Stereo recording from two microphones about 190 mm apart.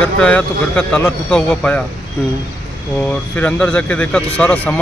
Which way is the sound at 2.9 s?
10° left (ahead or behind).